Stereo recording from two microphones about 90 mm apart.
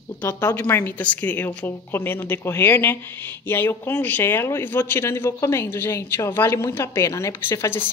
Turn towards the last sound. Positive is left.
turn(degrees=25)  # may be behind; listen again after turning